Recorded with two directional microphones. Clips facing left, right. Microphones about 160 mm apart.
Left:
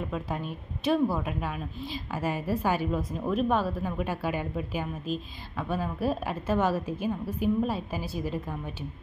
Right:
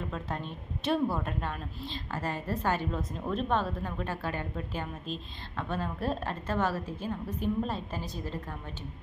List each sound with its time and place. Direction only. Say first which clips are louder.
0.1 s a woman's voice: left 4 dB; 5° left (ahead or behind)